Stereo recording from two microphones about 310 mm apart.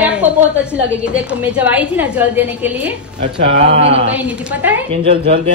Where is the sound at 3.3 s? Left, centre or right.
Centre.